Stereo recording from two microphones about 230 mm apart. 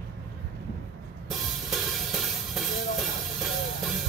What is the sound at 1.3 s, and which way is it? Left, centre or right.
Music, centre.